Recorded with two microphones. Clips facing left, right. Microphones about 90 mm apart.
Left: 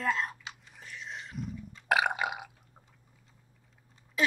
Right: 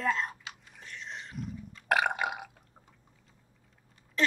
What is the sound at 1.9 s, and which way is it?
Burping, centre (ahead or behind).